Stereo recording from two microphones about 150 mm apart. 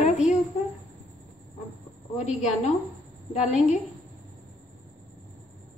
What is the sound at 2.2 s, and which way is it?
Speech, 50° left (ahead or behind).